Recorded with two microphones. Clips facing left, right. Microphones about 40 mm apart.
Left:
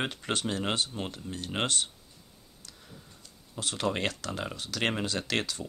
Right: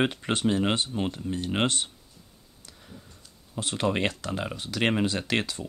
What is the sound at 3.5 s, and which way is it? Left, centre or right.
Speech, right.